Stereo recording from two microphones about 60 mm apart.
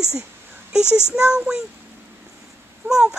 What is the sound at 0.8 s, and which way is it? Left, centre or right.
Speech, left.